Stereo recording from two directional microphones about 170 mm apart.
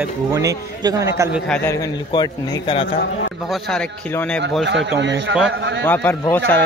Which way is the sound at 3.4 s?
Centre (ahead or behind).